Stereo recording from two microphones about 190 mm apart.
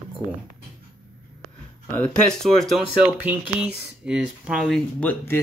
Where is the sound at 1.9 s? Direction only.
5° left (ahead or behind).